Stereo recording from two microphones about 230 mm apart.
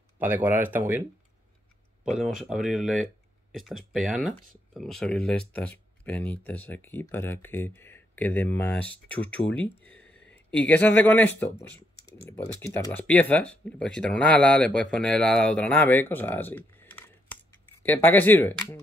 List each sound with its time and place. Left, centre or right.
0.2 s speech: centre
2.0 s speech: centre